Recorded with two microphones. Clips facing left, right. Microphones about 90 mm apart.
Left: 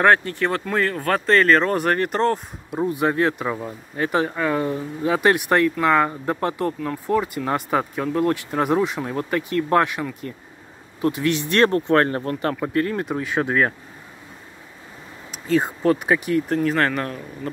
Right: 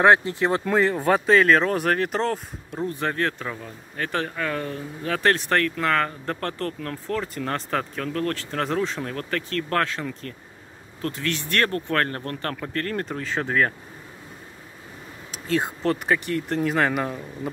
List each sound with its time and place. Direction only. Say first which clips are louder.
0.0 s speech: even; 15° right (ahead or behind); by 2.8 s centre (ahead or behind)
2.8 s speech: left 5 dB; 15° left (ahead or behind)
15.3 s speech: left 4 dB; centre (ahead or behind)